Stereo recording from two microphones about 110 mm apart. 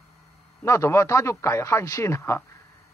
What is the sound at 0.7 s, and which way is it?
A man's voice, 25° left (ahead or behind).